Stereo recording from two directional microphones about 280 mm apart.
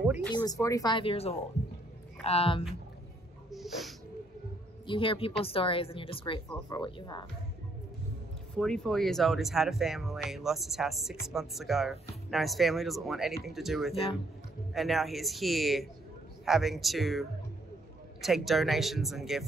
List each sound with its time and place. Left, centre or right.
0.0 s a sound: centre
0.3 s speech: centre
3.4 s snort: centre
4.8 s speech: centre
8.5 s speech: centre